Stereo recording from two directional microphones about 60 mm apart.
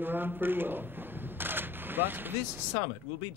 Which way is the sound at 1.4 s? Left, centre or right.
Right.